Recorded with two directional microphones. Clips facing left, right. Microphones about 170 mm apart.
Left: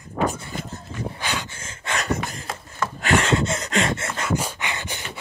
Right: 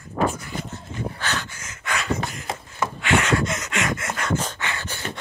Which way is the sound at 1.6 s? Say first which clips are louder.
Even; 30° left (ahead or behind).